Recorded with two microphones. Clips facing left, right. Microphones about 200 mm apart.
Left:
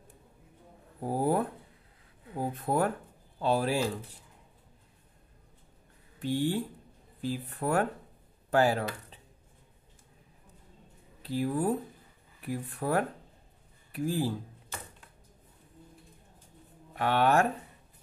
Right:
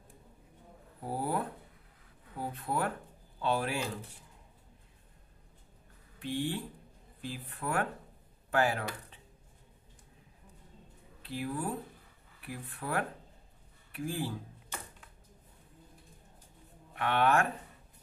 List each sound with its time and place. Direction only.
1.0 s speech: 45° left (ahead or behind)
6.1 s speech: 40° left (ahead or behind)
11.2 s speech: 40° left (ahead or behind)
16.9 s speech: 35° left (ahead or behind)